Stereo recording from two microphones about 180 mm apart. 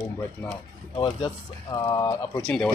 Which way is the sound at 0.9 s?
25° left (ahead or behind).